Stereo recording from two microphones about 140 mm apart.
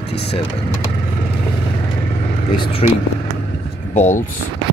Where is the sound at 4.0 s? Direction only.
60° left (ahead or behind).